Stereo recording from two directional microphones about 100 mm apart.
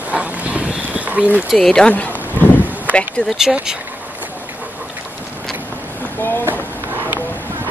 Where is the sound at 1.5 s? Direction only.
5° left (ahead or behind).